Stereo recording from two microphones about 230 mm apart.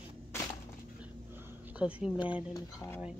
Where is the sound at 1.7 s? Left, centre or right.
Centre.